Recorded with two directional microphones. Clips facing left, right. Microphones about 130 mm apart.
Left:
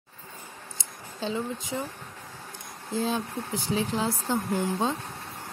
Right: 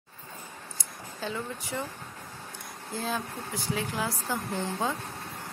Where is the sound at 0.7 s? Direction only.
20° left (ahead or behind).